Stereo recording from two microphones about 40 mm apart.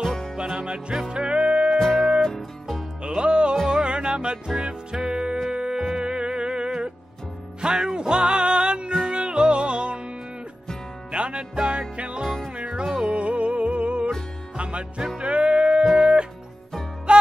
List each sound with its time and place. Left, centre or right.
0.0 s music: centre
0.5 s music: centre
2.2 s music: centre
3.1 s music: right
12.5 s music: right